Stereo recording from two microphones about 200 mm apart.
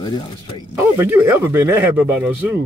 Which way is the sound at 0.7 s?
10° right (ahead or behind).